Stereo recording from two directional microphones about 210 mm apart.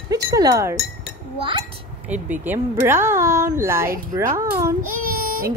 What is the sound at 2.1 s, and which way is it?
Speech, 10° right (ahead or behind).